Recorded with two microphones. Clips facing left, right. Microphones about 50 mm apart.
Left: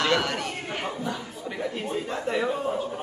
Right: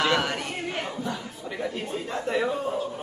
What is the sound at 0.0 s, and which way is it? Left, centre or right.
Chatter, centre.